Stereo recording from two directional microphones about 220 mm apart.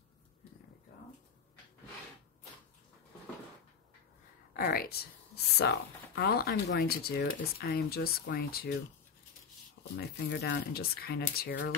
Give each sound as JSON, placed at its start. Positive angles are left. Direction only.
{"t": 4.6, "sound": "speech", "side_deg": 45}
{"t": 9.9, "sound": "speech", "side_deg": 45}